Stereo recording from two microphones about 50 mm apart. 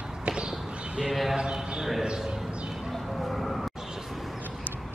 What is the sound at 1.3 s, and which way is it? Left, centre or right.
A man's voice, centre.